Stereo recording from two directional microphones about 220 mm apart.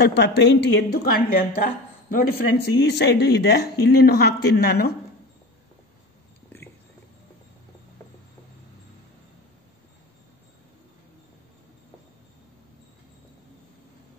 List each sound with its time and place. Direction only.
0.0 s a woman's voice: 50° left (ahead or behind)